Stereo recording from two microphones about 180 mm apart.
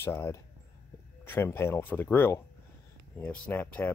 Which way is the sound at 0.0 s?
15° left (ahead or behind).